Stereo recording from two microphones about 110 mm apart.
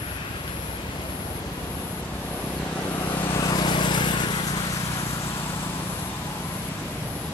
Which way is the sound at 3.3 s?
40° left (ahead or behind).